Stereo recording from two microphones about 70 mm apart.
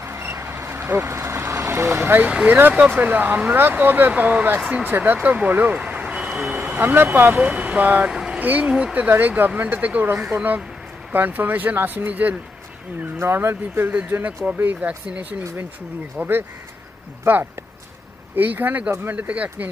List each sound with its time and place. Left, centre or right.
0.0 s vehicle: right
2.2 s speech: centre
6.5 s speech: right
8.1 s vehicle: centre
8.4 s speech: right
13.2 s speech: right
13.8 s speech: right
16.2 s speech: right